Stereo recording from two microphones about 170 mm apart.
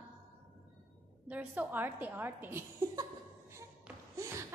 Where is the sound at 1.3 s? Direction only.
10° right (ahead or behind).